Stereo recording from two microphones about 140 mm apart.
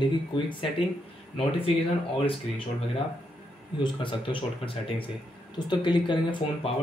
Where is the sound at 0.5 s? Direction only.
40° left (ahead or behind).